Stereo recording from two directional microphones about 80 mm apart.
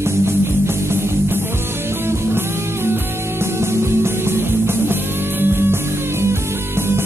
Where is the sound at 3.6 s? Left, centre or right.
Right.